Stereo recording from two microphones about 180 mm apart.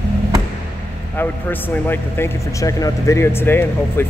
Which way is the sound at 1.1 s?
10° left (ahead or behind).